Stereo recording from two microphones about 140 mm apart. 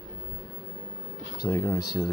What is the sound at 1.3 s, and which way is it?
Speech, 25° left (ahead or behind).